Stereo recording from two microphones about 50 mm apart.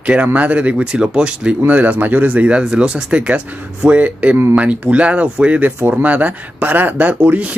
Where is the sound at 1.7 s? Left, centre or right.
Right.